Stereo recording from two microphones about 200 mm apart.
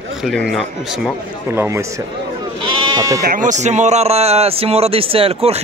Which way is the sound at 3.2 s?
40° right (ahead or behind).